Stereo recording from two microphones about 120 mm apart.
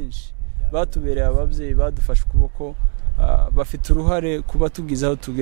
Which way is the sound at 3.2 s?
15° right (ahead or behind).